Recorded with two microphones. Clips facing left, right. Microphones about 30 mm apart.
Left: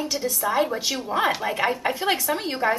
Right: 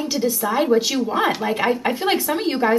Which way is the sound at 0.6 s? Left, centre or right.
Centre.